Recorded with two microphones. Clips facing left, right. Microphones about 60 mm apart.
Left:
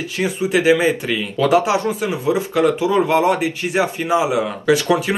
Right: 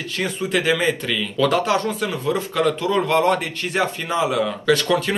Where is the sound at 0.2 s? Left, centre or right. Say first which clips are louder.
Left 4 dB; centre.